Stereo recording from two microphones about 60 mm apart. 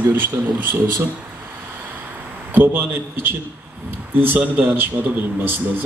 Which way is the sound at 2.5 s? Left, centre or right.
Right.